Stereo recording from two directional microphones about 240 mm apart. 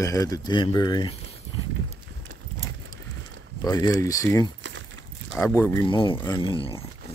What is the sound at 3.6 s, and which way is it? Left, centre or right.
Speech, centre.